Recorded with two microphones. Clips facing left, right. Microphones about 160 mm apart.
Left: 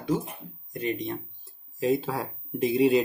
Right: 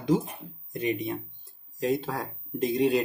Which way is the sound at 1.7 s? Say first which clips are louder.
Left 2 dB; centre (ahead or behind).